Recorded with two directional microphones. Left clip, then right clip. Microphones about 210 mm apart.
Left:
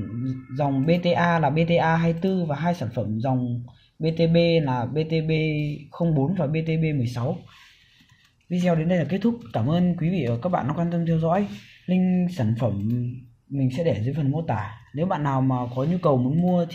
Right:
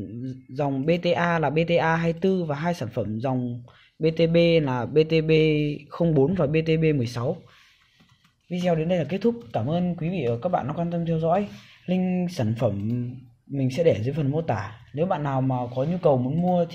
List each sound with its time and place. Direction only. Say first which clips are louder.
0.2 s speech: left 2 dB; 35° right (ahead or behind)
8.5 s speech: even; 10° right (ahead or behind)